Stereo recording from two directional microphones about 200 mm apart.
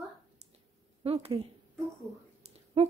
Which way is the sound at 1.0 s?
30° right (ahead or behind).